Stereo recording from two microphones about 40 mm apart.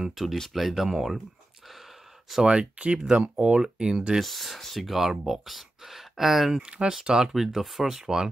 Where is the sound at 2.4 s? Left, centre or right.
Right.